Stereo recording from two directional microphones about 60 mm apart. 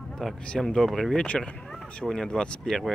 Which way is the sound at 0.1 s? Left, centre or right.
Centre.